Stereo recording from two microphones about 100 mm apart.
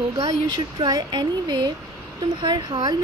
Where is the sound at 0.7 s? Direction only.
45° right (ahead or behind).